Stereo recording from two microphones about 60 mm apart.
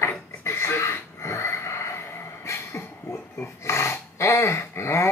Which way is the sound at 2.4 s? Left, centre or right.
Left.